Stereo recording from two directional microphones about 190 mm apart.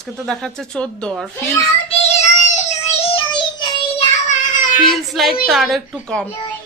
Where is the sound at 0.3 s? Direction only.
5° left (ahead or behind).